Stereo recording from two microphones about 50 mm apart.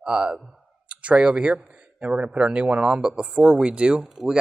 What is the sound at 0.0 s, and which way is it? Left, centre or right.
Speech, centre.